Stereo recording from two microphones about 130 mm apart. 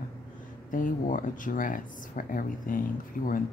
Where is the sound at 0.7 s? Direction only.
90° left.